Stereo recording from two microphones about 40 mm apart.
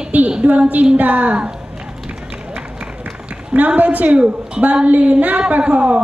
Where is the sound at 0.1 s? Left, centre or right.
Right.